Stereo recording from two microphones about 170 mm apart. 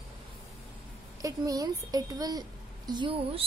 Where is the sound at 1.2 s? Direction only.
20° right (ahead or behind).